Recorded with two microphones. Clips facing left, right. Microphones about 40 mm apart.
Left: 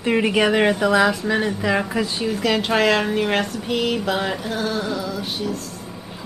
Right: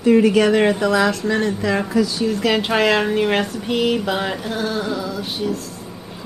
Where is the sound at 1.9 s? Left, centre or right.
Left.